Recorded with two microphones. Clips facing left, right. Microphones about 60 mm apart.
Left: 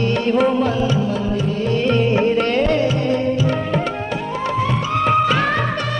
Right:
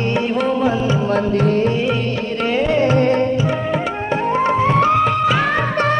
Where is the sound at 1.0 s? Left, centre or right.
Right.